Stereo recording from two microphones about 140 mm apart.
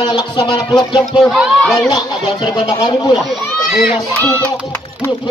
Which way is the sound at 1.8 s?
30° left (ahead or behind).